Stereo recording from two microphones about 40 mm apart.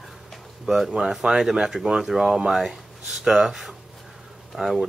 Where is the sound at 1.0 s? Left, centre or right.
Centre.